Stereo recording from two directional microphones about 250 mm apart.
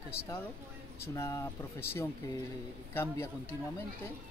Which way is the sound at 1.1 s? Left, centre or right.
Centre.